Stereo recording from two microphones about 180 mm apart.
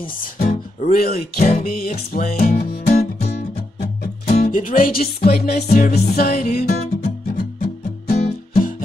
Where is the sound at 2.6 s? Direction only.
60° left (ahead or behind).